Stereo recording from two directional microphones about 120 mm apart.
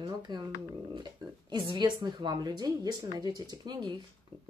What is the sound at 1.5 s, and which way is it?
Speech, 35° right (ahead or behind).